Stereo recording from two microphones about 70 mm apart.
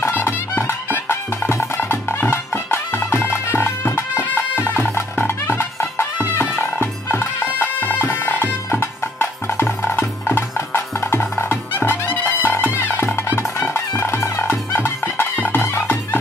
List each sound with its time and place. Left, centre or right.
0.0 s music: left